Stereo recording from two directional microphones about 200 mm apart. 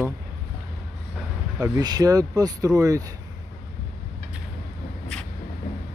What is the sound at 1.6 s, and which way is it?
Speech, 20° right (ahead or behind).